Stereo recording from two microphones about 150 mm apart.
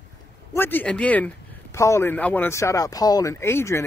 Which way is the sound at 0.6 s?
15° left (ahead or behind).